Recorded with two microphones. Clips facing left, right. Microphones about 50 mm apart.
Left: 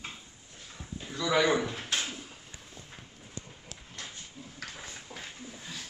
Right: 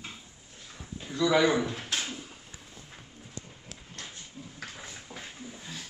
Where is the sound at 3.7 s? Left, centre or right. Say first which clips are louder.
Even; centre.